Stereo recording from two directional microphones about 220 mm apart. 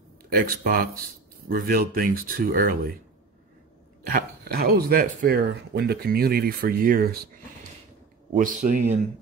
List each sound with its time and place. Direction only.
0.2 s speech: 40° right (ahead or behind)
4.1 s speech: 45° right (ahead or behind)
8.4 s speech: 40° right (ahead or behind)